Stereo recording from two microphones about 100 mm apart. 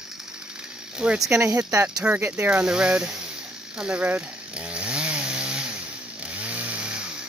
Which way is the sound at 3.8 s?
15° right (ahead or behind).